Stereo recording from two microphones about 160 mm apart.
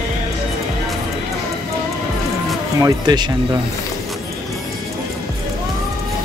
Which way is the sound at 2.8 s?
25° right (ahead or behind).